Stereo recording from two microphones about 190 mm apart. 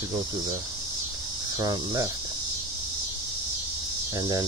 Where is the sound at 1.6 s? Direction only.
20° right (ahead or behind).